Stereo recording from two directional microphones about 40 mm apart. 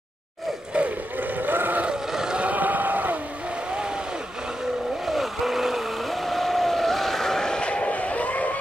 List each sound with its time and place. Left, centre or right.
0.7 s boat: right
1.1 s boat: right
1.9 s a sound: centre
2.4 s a sound: right
3.7 s vehicle: right
5.0 s vehicle: centre; by 8.5 s left